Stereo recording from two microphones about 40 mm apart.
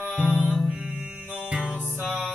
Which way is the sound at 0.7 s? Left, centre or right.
Right.